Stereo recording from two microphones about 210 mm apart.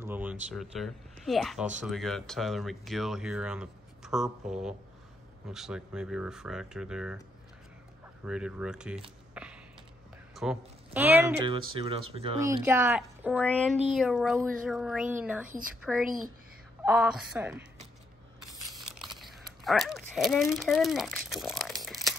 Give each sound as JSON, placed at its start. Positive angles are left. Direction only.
{"t": 0.0, "sound": "speech", "side_deg": -10}
{"t": 8.2, "sound": "speech", "side_deg": -5}
{"t": 9.3, "sound": "a sound", "side_deg": -5}
{"t": 10.3, "sound": "speech", "side_deg": -5}
{"t": 11.4, "sound": "speech", "side_deg": -25}
{"t": 12.4, "sound": "speech", "side_deg": -15}
{"t": 13.4, "sound": "speech", "side_deg": 5}
{"t": 19.1, "sound": "a sound", "side_deg": 0}
{"t": 20.5, "sound": "speech", "side_deg": 0}
{"t": 21.8, "sound": "crumpling", "side_deg": 0}